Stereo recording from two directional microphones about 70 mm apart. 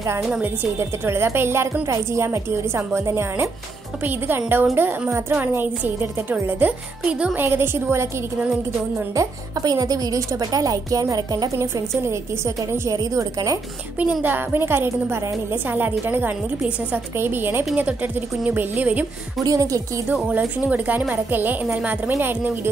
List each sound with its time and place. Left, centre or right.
0.7 s a woman's voice: right
4.0 s a woman's voice: right
9.6 s a woman's voice: right
11.5 s a woman's voice: right
12.9 s a woman's voice: right
13.9 s a woman's voice: right
19.4 s a woman's voice: right
20.2 s a woman's voice: right